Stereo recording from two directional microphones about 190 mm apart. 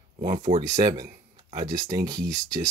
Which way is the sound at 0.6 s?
20° right (ahead or behind).